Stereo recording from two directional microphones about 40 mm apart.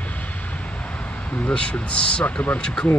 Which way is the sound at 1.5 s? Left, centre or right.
Left.